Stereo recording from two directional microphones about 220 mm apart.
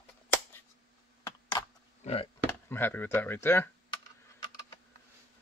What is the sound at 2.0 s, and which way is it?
Speech, 25° left (ahead or behind).